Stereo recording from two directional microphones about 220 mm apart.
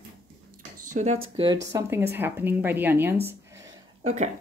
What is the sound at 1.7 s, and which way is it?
Speech, 10° right (ahead or behind).